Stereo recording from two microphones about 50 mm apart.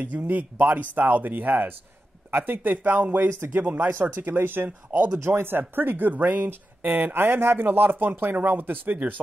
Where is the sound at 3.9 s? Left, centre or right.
Right.